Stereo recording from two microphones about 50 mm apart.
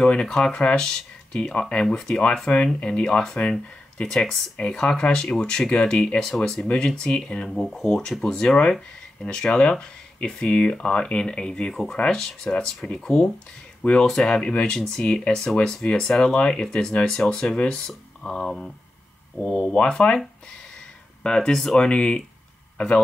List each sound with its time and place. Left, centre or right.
0.0 s speech: centre
7.4 s speech: centre
9.2 s speech: centre
11.7 s speech: centre
21.2 s speech: centre